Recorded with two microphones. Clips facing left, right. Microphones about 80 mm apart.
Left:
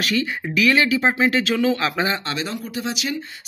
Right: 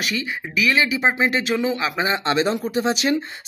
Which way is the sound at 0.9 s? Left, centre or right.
Centre.